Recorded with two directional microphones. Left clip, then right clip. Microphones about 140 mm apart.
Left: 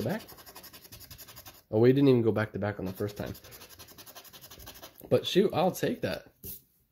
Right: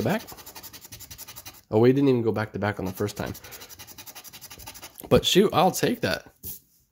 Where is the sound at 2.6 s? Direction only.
20° right (ahead or behind).